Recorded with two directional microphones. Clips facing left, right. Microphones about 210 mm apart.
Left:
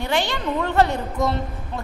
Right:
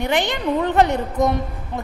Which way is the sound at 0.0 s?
20° right (ahead or behind).